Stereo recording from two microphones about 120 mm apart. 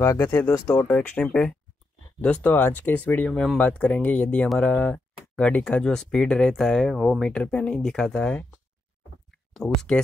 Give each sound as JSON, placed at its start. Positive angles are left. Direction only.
{"t": 0.0, "sound": "speech", "side_deg": 20}
{"t": 0.7, "sound": "speech", "side_deg": 10}
{"t": 9.6, "sound": "speech", "side_deg": 5}